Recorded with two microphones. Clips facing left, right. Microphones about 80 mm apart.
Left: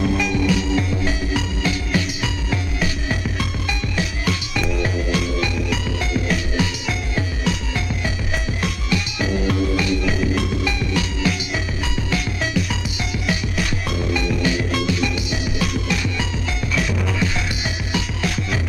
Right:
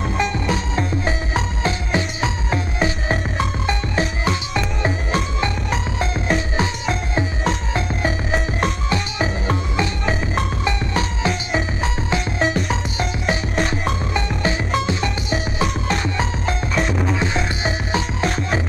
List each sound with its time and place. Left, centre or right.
0.0 s music: right